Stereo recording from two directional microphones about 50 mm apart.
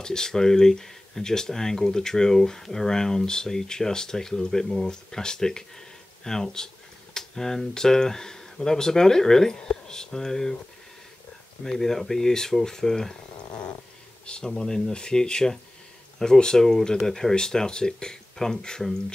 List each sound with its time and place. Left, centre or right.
0.0 s speech: centre
11.6 s speech: centre
14.2 s speech: centre